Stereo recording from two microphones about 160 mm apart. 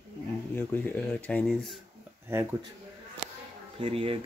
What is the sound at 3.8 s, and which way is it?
Speech, 35° right (ahead or behind).